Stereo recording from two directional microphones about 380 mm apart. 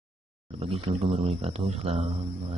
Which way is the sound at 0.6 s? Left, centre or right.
Centre.